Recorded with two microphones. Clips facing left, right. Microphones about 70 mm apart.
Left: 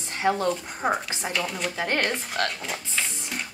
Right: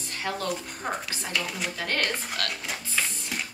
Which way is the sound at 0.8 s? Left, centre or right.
Centre.